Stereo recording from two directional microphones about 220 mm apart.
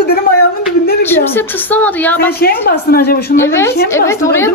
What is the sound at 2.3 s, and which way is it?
A woman's voice, 45° left (ahead or behind).